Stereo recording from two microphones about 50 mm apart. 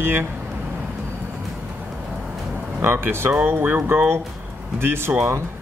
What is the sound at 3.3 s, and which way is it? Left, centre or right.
Speech, right.